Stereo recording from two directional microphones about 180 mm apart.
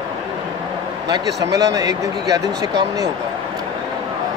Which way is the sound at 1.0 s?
20° right (ahead or behind).